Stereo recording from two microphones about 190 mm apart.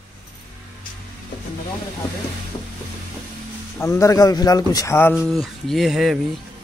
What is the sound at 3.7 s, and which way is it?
A man's voice, 15° left (ahead or behind).